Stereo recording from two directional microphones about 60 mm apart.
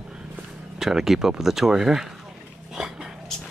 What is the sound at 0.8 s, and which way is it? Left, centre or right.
Speech, centre.